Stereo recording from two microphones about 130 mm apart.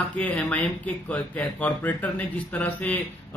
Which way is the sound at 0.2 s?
10° left (ahead or behind).